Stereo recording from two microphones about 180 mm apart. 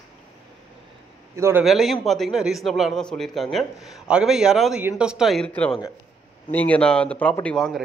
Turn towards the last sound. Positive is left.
turn(degrees=0)  # may be behind; listen again after turning